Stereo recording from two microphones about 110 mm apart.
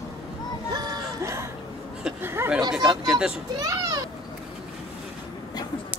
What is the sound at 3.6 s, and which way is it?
Speech, 35° right (ahead or behind).